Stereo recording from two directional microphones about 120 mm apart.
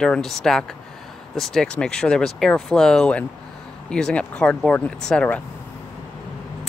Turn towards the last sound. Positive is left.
turn(degrees=10)  # may be behind; listen again after turning